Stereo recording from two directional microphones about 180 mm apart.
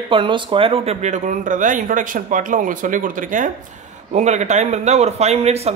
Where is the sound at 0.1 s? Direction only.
25° right (ahead or behind).